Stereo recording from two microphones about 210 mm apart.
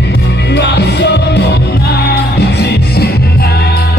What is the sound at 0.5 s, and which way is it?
Music, 55° left (ahead or behind).